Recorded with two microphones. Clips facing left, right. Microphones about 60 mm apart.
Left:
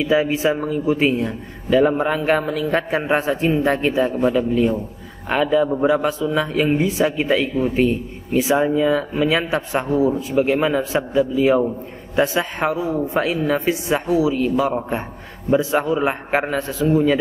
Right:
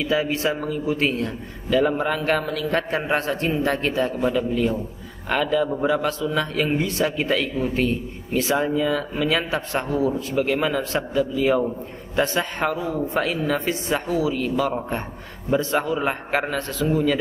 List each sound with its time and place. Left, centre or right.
0.0 s a man's voice: centre
16.5 s a man's voice: centre
16.9 s a man's voice: centre